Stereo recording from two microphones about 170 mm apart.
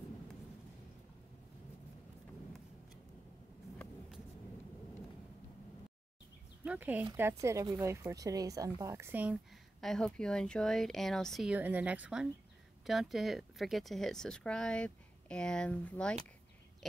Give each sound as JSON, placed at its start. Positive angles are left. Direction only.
{"t": 6.6, "sound": "speech", "side_deg": -10}
{"t": 9.8, "sound": "speech", "side_deg": 0}